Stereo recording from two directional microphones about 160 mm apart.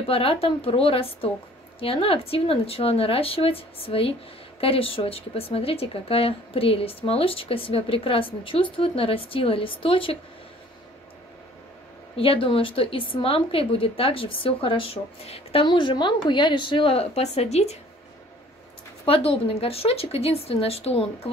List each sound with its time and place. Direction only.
0.1 s a woman's voice: 35° left (ahead or behind)
12.2 s a woman's voice: 35° left (ahead or behind)
19.0 s a woman's voice: 35° left (ahead or behind)